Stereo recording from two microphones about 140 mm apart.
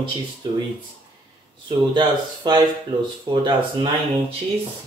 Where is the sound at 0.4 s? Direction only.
35° right (ahead or behind).